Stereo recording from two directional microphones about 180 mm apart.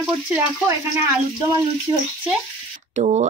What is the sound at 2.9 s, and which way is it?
Speech, 40° right (ahead or behind).